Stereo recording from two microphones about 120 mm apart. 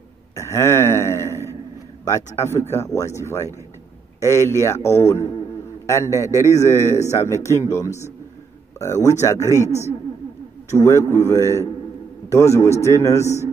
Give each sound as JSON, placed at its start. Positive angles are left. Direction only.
{"t": 0.4, "sound": "a sound", "side_deg": 25}
{"t": 2.3, "sound": "a man's voice", "side_deg": 20}
{"t": 10.8, "sound": "a man's voice", "side_deg": 25}